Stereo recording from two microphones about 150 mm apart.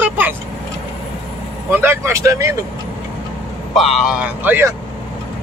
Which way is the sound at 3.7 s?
Centre (ahead or behind).